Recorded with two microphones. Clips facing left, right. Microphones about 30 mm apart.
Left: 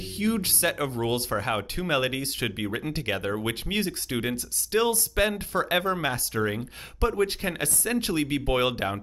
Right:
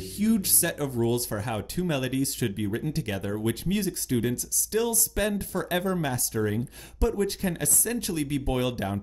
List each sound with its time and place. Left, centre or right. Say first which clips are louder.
0.2 s speech: even; left